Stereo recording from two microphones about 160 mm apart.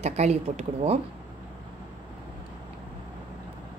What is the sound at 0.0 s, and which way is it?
Speech, 40° right (ahead or behind).